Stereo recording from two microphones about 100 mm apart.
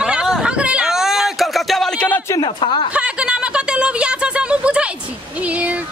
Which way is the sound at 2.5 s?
60° left (ahead or behind).